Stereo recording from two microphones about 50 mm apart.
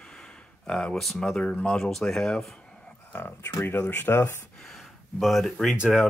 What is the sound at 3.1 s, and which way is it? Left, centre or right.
Speech, left.